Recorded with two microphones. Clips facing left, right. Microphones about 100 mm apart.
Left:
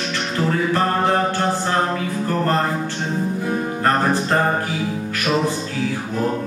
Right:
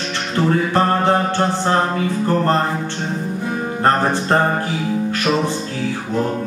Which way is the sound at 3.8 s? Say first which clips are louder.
Right 3 dB; 30° right (ahead or behind).